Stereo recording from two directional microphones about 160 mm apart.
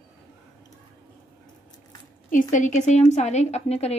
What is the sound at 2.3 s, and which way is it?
A woman's voice, 50° left (ahead or behind).